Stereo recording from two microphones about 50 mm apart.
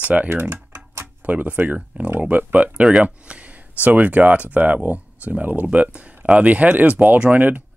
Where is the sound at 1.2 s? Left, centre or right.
Right.